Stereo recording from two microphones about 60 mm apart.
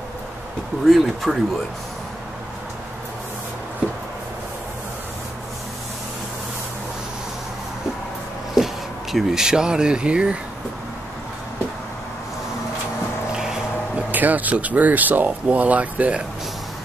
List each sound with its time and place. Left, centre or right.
0.8 s speech: centre
8.5 s speech: centre
13.3 s a sound: centre
13.9 s speech: right